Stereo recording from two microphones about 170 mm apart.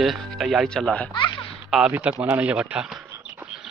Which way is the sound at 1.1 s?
25° left (ahead or behind).